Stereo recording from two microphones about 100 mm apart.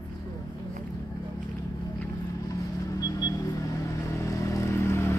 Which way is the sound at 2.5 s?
35° left (ahead or behind).